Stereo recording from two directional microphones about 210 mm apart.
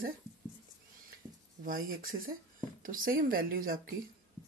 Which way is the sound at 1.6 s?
40° right (ahead or behind).